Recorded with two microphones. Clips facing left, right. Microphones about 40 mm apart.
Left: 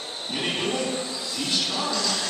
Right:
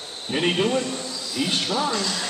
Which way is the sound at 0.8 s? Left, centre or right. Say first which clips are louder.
Left 1 dB; left.